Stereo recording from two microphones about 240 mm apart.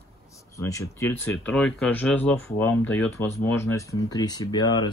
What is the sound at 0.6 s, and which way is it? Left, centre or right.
Speech, centre.